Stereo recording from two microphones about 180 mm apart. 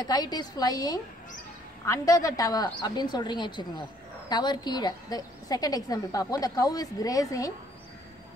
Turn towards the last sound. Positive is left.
turn(degrees=20)  # may be behind; listen again after turning